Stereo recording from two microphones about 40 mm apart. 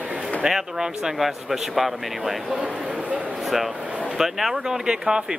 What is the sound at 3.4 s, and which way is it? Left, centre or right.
Speech, centre.